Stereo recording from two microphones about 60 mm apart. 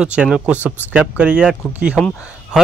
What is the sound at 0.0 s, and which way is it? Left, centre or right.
Speech, centre.